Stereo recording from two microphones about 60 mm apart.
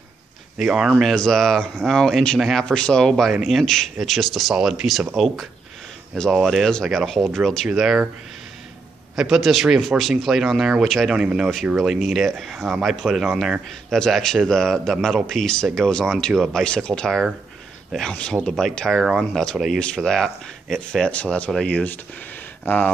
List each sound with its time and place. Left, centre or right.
0.6 s speech: centre
1.1 s speech: centre
2.6 s speech: centre
3.3 s speech: centre
3.6 s speech: centre
9.1 s speech: centre
11.1 s speech: centre
18.9 s speech: centre
19.3 s speech: centre
21.1 s speech: left
22.7 s speech: left